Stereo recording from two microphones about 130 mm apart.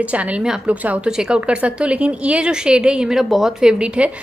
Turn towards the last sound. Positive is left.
turn(degrees=-10)  # may be behind; listen again after turning